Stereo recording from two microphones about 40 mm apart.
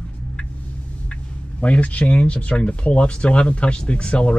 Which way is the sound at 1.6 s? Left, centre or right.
Left.